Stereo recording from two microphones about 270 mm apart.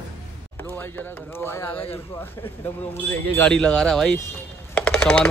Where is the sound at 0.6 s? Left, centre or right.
Centre.